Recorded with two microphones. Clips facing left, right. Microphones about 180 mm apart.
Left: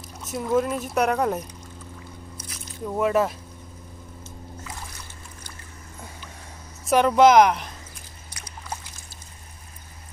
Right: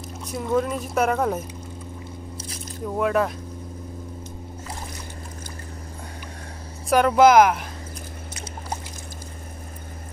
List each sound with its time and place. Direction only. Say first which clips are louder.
0.2 s speech: even; centre (ahead or behind)
2.3 s biting: right 5 dB; 30° right (ahead or behind)
2.9 s speech: even; centre (ahead or behind)
6.9 s speech: right 1 dB; centre (ahead or behind)